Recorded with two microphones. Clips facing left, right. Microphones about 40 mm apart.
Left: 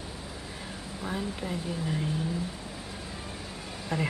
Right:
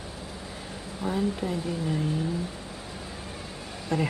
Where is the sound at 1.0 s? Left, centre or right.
Centre.